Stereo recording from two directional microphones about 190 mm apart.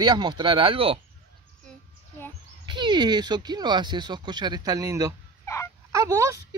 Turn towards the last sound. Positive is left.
turn(degrees=-15)  # may be behind; listen again after turning